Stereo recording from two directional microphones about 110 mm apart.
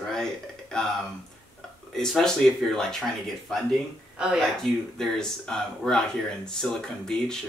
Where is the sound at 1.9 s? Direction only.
5° left (ahead or behind).